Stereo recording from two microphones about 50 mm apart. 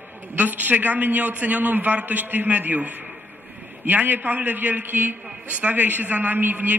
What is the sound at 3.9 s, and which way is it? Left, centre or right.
A man's voice, right.